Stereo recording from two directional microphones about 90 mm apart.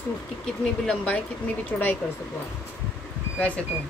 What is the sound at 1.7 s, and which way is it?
Speech, 15° left (ahead or behind).